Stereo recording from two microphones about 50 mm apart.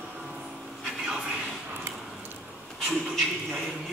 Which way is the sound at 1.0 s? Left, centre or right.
Centre.